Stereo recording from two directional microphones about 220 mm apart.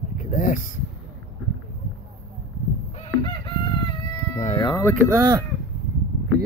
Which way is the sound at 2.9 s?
30° left (ahead or behind).